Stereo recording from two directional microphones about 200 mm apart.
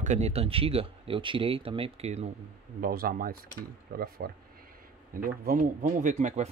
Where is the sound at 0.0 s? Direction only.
35° right (ahead or behind).